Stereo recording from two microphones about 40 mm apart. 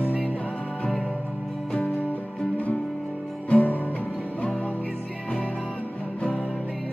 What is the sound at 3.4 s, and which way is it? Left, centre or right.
Music, left.